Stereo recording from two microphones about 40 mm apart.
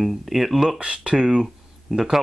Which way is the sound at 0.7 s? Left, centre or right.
Right.